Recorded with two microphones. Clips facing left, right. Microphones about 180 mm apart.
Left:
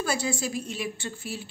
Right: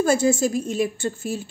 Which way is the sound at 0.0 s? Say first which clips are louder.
Right 10 dB; 45° right (ahead or behind).